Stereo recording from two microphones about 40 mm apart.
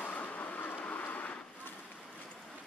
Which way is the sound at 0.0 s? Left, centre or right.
Left.